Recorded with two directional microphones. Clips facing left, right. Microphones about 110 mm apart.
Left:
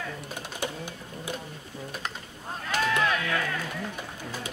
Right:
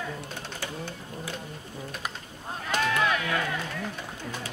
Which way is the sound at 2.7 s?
15° right (ahead or behind).